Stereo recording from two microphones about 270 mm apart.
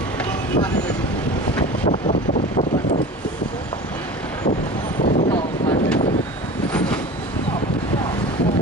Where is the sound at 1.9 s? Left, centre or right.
Left.